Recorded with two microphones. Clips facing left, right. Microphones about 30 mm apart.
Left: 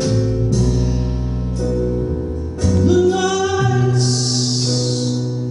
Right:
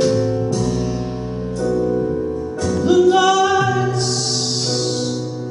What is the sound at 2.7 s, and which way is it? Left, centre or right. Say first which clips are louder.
Music: right 2 dB; right.